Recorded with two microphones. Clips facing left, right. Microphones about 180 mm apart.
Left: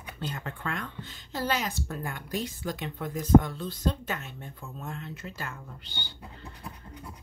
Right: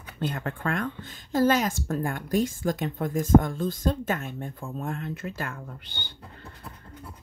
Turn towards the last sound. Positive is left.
turn(degrees=-55)  # may be behind; listen again after turning